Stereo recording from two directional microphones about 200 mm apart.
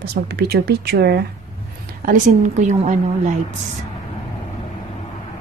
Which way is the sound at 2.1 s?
35° right (ahead or behind).